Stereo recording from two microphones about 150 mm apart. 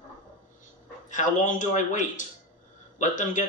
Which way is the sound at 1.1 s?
60° left (ahead or behind).